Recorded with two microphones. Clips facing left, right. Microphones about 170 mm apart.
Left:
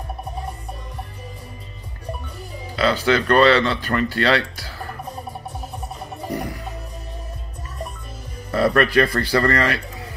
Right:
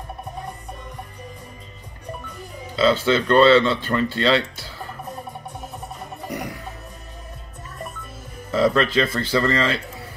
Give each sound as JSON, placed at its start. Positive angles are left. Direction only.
{"t": 2.7, "sound": "speech", "side_deg": -25}
{"t": 8.5, "sound": "speech", "side_deg": -20}